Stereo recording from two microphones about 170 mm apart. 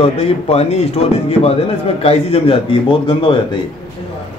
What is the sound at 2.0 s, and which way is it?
A man's voice, 35° left (ahead or behind).